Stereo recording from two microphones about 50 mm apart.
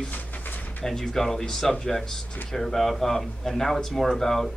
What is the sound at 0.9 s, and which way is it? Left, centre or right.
Speech, centre.